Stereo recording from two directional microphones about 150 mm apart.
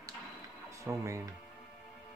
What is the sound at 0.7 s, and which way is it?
Speech, 20° right (ahead or behind).